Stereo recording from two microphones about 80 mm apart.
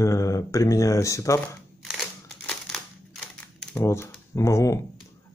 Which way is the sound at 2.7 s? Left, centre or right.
Centre.